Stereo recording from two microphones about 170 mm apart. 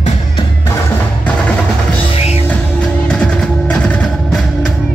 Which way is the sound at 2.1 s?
35° left (ahead or behind).